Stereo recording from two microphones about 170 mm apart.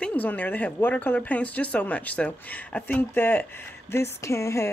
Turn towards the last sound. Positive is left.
turn(degrees=15)  # may be behind; listen again after turning